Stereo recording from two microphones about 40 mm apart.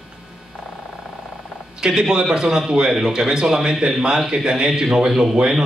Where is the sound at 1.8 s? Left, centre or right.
Centre.